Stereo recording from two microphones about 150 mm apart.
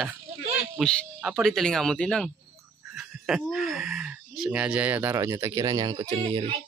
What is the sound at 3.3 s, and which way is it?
Speech, centre (ahead or behind).